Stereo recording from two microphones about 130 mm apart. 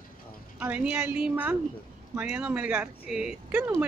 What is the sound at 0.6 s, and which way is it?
A woman's voice, 10° right (ahead or behind).